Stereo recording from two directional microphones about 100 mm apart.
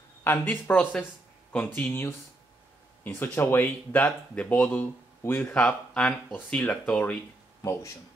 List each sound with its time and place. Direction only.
0.2 s speech: 20° left (ahead or behind)
7.6 s speech: 30° left (ahead or behind)